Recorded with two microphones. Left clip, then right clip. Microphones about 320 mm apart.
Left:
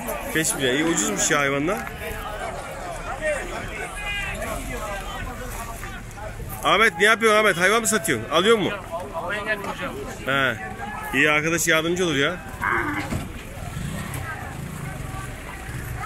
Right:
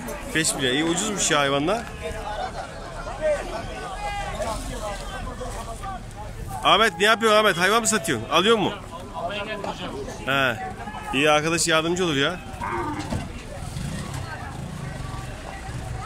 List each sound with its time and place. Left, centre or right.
0.3 s speech: centre
6.6 s speech: centre
10.2 s speech: centre